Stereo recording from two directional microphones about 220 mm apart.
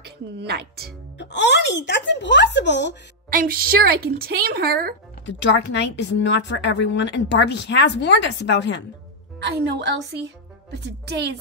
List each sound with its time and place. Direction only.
0.0 s a woman's voice: 50° right (ahead or behind)
1.1 s a woman's voice: 50° left (ahead or behind)
3.3 s a woman's voice: 40° right (ahead or behind)
5.2 s a woman's voice: 55° left (ahead or behind)
9.4 s a woman's voice: 50° right (ahead or behind)